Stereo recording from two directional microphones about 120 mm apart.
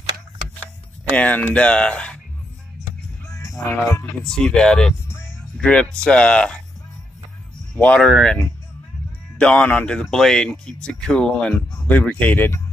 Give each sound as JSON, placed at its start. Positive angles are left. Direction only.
{"t": 1.1, "sound": "speech", "side_deg": 10}
{"t": 3.3, "sound": "music", "side_deg": 25}
{"t": 4.2, "sound": "speech", "side_deg": 5}
{"t": 7.7, "sound": "speech", "side_deg": 10}
{"t": 9.4, "sound": "speech", "side_deg": 10}